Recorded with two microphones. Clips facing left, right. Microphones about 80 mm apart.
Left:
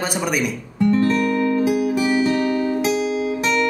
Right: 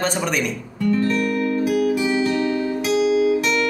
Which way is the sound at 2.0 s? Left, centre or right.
Left.